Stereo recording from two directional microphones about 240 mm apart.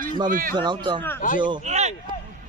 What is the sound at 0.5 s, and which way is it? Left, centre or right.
A man's voice, centre.